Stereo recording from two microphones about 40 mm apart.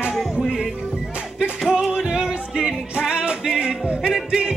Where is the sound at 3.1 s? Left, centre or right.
Right.